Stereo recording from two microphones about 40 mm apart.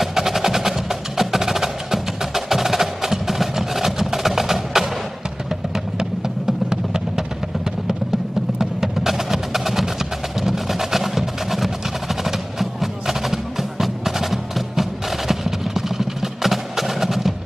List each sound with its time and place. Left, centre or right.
0.0 s wood block: centre
5.9 s music: centre
8.5 s music: centre